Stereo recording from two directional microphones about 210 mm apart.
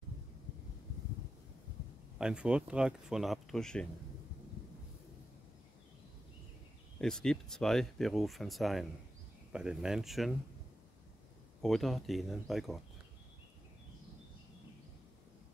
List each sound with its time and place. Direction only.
2.1 s speech: 5° right (ahead or behind)
7.0 s speech: 5° left (ahead or behind)
11.6 s speech: centre (ahead or behind)